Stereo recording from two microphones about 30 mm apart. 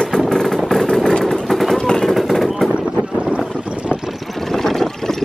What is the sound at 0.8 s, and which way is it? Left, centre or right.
Vehicle, left.